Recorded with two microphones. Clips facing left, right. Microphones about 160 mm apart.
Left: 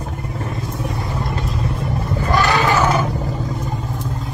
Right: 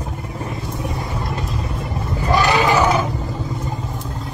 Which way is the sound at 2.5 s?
15° right (ahead or behind).